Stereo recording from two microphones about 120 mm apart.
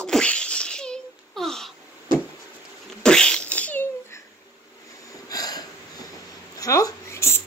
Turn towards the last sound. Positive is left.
turn(degrees=20)  # may be behind; listen again after turning